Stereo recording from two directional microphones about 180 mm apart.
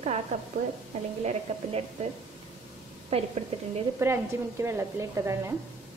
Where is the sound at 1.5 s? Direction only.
35° right (ahead or behind).